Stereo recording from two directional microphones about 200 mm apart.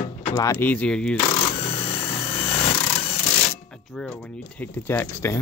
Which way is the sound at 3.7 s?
5° left (ahead or behind).